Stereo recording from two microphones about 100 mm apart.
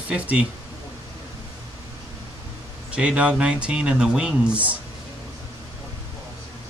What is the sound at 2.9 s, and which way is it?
Speech, 10° right (ahead or behind).